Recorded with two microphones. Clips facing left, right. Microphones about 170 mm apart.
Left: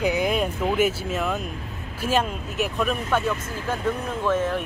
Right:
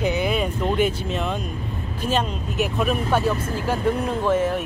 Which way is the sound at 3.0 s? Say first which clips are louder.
Right 3 dB; 35° right (ahead or behind).